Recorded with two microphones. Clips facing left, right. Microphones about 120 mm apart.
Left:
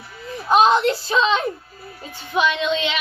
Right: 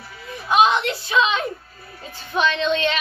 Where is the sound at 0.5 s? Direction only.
35° left (ahead or behind).